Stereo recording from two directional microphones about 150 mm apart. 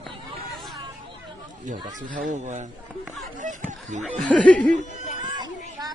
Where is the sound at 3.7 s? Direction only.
55° right (ahead or behind).